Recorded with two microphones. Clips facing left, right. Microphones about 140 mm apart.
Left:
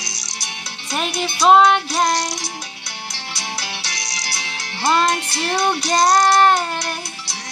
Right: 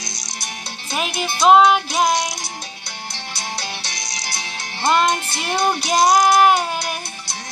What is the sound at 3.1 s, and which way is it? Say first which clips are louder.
Music: right 1 dB; 50° right (ahead or behind).